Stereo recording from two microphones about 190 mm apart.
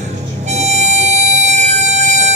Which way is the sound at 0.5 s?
35° right (ahead or behind).